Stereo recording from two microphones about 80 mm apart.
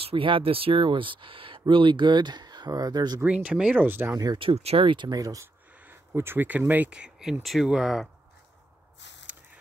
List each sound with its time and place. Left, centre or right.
0.1 s speech: right
3.3 s speech: centre
4.4 s speech: right
5.1 s speech: right
6.1 s speech: right
6.9 s speech: centre